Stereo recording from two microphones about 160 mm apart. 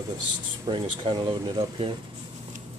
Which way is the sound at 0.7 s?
30° right (ahead or behind).